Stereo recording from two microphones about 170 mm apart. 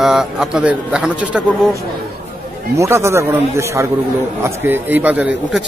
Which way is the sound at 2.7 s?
15° right (ahead or behind).